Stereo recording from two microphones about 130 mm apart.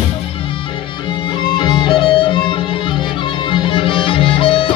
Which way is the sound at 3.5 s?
40° left (ahead or behind).